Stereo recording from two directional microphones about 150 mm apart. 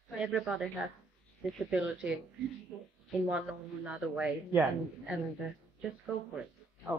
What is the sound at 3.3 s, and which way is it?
A woman's voice, 5° right (ahead or behind).